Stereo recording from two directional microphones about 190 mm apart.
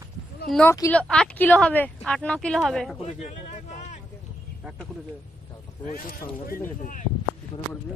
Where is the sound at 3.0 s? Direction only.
40° left (ahead or behind).